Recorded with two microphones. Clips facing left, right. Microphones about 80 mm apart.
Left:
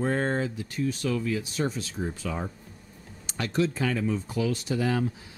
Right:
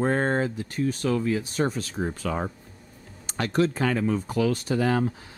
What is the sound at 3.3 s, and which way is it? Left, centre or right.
Speech, right.